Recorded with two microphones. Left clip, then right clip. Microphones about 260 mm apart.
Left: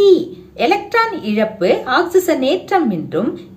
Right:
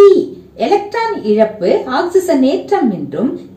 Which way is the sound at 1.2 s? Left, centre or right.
Left.